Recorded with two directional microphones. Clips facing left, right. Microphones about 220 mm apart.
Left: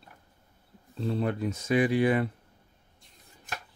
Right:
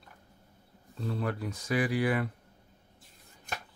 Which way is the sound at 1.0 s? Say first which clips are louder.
Left 5 dB; 25° left (ahead or behind).